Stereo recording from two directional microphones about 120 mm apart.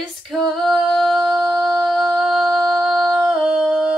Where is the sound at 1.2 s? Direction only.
35° right (ahead or behind).